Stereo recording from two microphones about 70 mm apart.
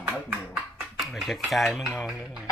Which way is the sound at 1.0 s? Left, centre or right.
Centre.